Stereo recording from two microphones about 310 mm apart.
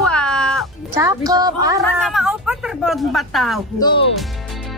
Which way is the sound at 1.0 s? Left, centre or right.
Centre.